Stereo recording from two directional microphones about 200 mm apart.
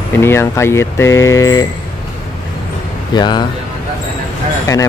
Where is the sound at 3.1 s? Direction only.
20° left (ahead or behind).